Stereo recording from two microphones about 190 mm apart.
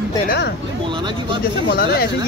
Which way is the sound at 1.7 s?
55° left (ahead or behind).